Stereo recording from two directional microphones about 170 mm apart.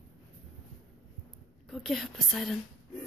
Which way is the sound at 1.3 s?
Centre (ahead or behind).